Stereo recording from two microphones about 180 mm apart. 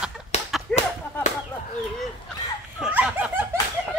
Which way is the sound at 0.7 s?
5° left (ahead or behind).